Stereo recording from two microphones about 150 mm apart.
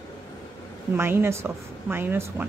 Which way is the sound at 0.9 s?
15° right (ahead or behind).